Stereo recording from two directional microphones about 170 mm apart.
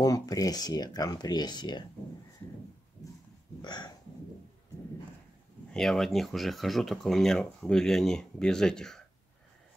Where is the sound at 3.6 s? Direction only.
25° left (ahead or behind).